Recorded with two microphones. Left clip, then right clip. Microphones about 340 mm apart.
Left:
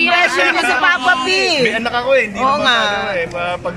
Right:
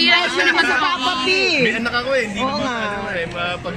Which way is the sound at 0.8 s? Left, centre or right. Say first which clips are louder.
Left 5 dB; left.